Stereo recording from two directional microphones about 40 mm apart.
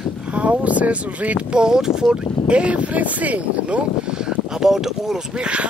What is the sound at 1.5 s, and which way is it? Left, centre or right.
Speech, centre.